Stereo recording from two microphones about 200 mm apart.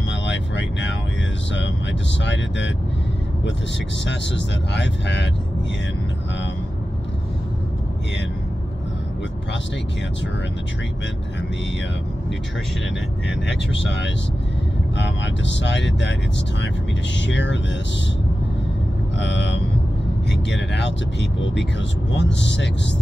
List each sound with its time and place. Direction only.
0.1 s vehicle: 65° left (ahead or behind)
1.5 s speech: 65° left (ahead or behind)
4.0 s speech: 60° left (ahead or behind)
13.5 s speech: 60° left (ahead or behind)
17.2 s speech: 65° left (ahead or behind)
19.1 s speech: 60° left (ahead or behind)